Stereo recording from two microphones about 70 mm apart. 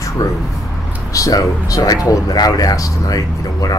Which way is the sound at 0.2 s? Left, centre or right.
Left.